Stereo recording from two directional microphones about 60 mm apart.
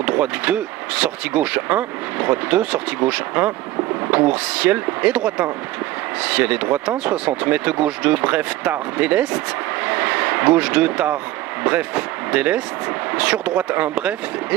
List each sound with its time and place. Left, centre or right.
0.0 s speech: right
9.8 s vehicle: right
11.6 s speech: right